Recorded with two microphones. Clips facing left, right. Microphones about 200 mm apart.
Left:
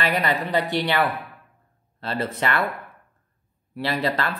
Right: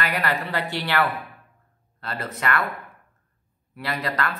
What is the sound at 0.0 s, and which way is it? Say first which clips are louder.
Speech: left 3 dB; 20° left (ahead or behind).